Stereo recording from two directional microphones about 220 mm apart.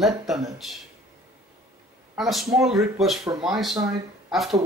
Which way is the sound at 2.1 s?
Centre (ahead or behind).